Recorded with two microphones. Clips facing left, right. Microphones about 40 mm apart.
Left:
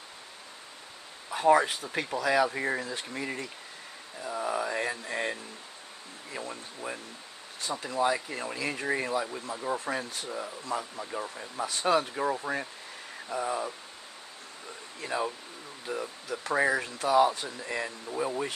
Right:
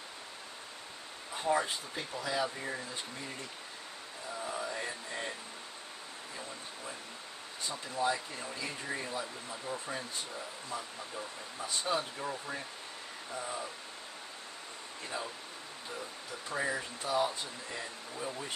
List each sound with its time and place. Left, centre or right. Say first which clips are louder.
1.3 s speech: left 9 dB; left
4.3 s a sound: left 7 dB; left
6.3 s a sound: left 8 dB; left
7.6 s speech: left 5 dB; left
8.5 s speech: left 8 dB; left
13.3 s speech: left 8 dB; left
15.1 s speech: left 9 dB; left